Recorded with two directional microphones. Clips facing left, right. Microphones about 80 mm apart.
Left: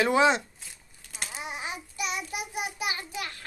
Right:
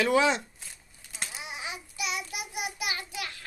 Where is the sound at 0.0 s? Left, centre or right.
Left.